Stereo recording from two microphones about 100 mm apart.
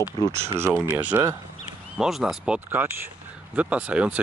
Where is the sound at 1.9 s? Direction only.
5° right (ahead or behind).